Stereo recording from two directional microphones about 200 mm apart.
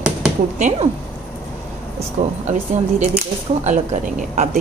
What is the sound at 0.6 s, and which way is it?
Speech, 40° right (ahead or behind).